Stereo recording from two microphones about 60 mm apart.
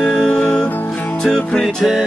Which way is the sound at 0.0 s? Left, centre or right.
Centre.